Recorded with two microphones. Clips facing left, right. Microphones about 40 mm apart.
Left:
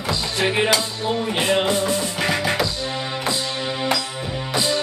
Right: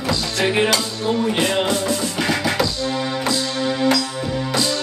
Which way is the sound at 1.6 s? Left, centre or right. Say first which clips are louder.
Even; centre.